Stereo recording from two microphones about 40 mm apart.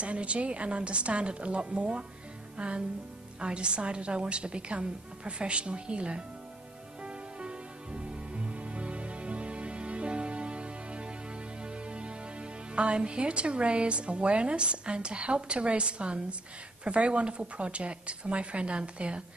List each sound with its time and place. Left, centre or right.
0.0 s a woman's voice: right
2.5 s music: right
3.3 s a woman's voice: right
7.0 s music: right
11.6 s a woman's voice: right